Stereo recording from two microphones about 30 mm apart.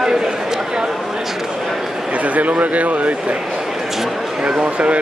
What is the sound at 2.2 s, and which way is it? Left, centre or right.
Speech, right.